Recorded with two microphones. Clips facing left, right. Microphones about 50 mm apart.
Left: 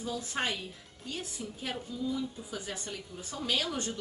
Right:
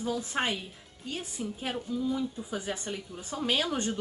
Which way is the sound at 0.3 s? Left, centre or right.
Right.